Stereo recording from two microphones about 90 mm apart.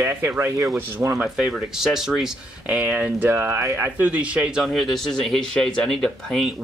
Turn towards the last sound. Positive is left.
turn(degrees=5)  # may be behind; listen again after turning